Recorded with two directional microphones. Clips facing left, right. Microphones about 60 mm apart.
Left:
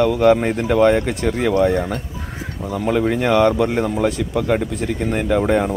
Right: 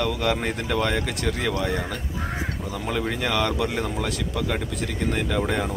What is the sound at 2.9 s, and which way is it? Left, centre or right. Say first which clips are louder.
Speech: left 9 dB; left.